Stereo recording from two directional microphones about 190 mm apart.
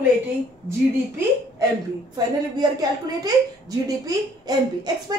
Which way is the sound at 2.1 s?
20° right (ahead or behind).